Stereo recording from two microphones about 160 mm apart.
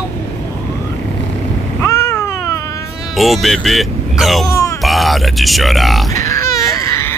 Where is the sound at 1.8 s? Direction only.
20° left (ahead or behind).